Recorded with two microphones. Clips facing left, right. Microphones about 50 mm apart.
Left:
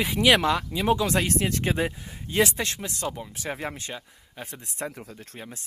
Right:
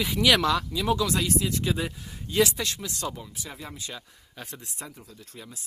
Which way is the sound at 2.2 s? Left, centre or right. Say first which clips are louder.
Even; left.